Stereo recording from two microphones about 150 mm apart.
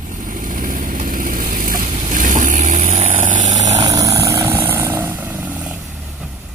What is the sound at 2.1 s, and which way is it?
Vehicle, 60° right (ahead or behind).